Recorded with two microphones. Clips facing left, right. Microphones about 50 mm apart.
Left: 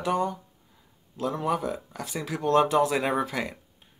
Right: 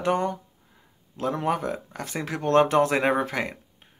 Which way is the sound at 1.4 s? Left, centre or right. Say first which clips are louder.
Right 1 dB; right.